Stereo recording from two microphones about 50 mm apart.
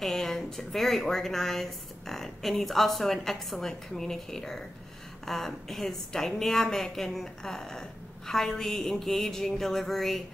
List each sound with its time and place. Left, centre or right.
0.0 s a woman's voice: centre